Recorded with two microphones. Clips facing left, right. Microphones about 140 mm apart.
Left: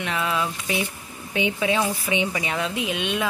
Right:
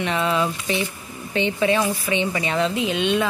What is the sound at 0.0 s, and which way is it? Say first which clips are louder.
Speech: right 4 dB; centre (ahead or behind).